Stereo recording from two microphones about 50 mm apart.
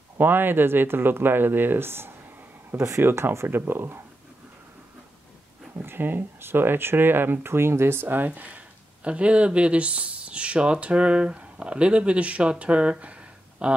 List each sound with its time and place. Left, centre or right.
0.2 s speech: right
2.7 s speech: right
5.9 s speech: right
8.3 s speech: right